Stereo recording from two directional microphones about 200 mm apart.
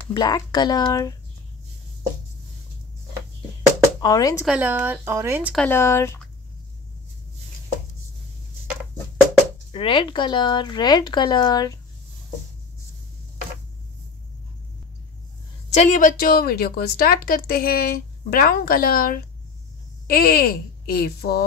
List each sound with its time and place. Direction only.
0.1 s speech: 20° left (ahead or behind)
4.0 s speech: 20° left (ahead or behind)
4.5 s speech: 10° right (ahead or behind)
5.5 s speech: 5° left (ahead or behind)
9.7 s speech: 25° left (ahead or behind)
15.7 s a woman's voice: 35° left (ahead or behind)